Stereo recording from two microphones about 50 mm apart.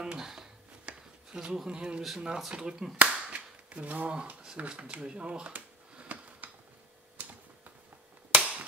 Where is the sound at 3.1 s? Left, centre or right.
Right.